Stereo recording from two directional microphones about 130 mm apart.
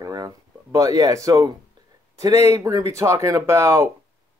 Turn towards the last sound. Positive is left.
turn(degrees=-20)  # may be behind; listen again after turning